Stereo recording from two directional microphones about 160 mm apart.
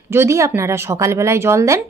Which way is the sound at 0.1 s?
15° right (ahead or behind).